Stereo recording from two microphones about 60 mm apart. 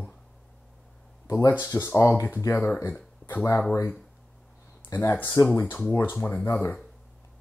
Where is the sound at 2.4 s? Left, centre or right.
Left.